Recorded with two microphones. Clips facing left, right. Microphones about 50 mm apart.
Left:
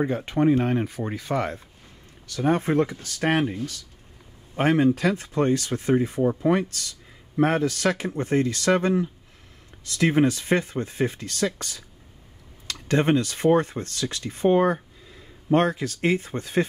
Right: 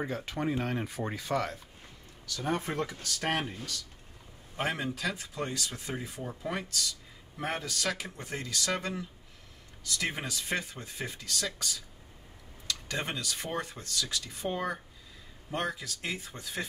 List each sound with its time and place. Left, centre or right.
0.0 s speech: left
0.8 s speech: centre
2.2 s speech: left
4.9 s speech: left
7.3 s speech: left
9.9 s speech: left